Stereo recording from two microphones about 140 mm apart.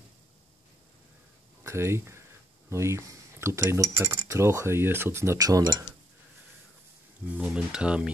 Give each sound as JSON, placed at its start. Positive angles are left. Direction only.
{"t": 1.6, "sound": "speech", "side_deg": -20}
{"t": 7.4, "sound": "speech", "side_deg": -5}